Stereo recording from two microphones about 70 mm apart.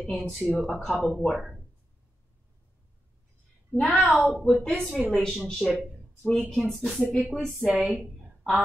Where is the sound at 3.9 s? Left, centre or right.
Centre.